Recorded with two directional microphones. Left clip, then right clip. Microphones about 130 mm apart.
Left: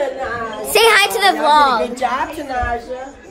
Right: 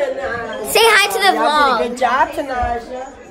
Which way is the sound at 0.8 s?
35° left (ahead or behind).